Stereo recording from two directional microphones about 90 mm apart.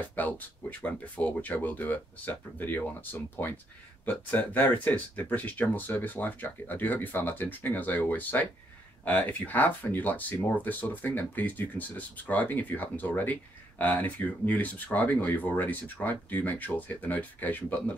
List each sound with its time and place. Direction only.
0.0 s speech: 20° left (ahead or behind)